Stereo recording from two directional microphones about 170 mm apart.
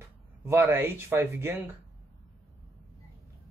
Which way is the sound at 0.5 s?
15° right (ahead or behind).